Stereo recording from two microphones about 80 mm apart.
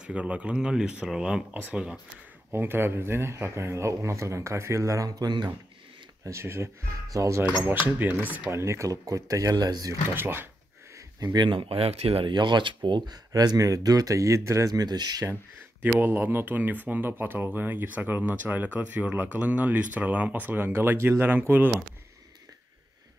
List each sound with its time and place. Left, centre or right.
0.0 s speech: centre
2.5 s speech: right
6.2 s speech: right
7.6 s speech: right
8.5 s speech: right
10.1 s speech: right
11.0 s speech: right
12.3 s speech: right
15.8 s speech: right